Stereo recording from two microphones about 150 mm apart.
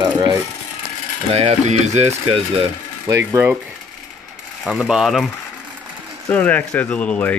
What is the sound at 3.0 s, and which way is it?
Speech, 20° right (ahead or behind).